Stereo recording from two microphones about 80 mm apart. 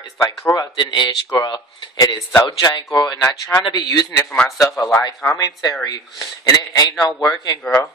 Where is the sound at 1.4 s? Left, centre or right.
Left.